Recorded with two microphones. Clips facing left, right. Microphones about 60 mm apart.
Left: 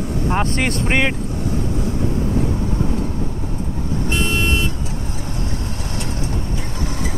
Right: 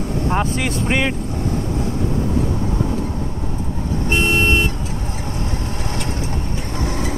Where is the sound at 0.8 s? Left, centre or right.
Centre.